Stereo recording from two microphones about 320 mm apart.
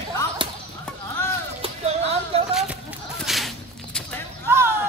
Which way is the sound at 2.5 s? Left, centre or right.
Centre.